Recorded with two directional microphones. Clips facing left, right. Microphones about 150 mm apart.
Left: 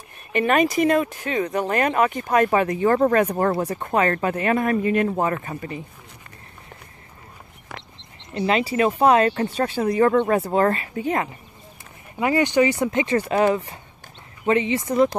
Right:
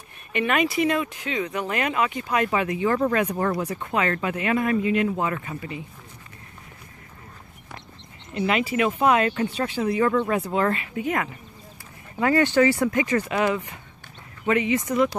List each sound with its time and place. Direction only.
0.3 s speech: 40° left (ahead or behind)
8.4 s speech: 35° left (ahead or behind)
12.2 s speech: 15° left (ahead or behind)